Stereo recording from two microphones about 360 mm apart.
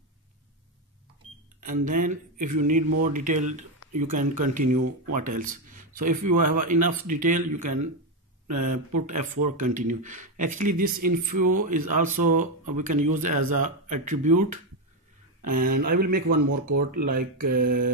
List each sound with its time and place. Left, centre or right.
1.6 s speech: right
4.6 s speech: right
5.1 s speech: right
5.5 s a sound: right
6.6 s speech: right
15.4 s speech: right
16.3 s speech: right
16.7 s speech: right
17.1 s speech: right
17.5 s speech: right